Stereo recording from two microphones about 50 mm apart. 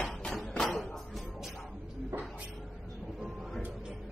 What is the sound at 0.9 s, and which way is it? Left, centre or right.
Music, centre.